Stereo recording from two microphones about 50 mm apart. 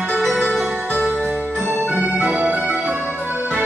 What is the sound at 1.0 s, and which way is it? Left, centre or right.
Music, right.